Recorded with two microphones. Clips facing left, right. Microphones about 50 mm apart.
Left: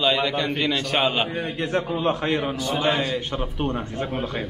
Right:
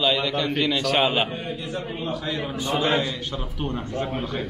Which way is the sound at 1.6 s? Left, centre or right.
Left.